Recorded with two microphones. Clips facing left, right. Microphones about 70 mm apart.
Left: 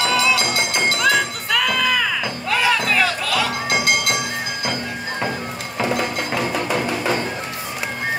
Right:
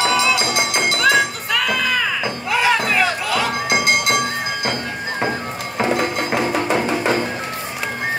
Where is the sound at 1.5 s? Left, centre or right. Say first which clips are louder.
Left 1 dB; centre.